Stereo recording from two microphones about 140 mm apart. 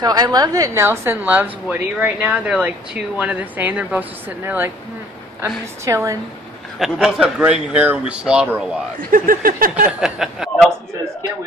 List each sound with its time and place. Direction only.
0.0 s a woman's voice: 30° right (ahead or behind); by 4.7 s 15° right (ahead or behind)
5.9 s a woman's voice: 20° right (ahead or behind)
6.8 s a woman's voice: 5° right (ahead or behind)
9.1 s a sound: 90° right
9.8 s speech: 5° right (ahead or behind)